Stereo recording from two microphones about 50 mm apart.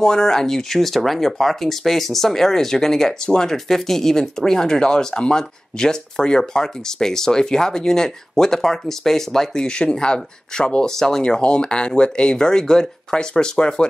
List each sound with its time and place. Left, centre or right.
0.0 s speech: centre
11.0 s speech: centre